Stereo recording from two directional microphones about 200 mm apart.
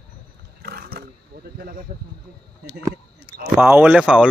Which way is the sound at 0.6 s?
50° right (ahead or behind).